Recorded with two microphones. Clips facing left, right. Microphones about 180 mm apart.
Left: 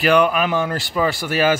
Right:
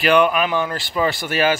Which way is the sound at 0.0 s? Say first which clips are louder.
Even; 40° left (ahead or behind).